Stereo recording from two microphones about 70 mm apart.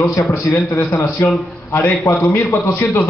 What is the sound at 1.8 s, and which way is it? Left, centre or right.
Speech, left.